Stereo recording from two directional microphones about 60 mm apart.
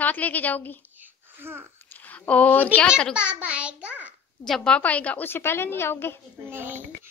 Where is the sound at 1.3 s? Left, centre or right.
Right.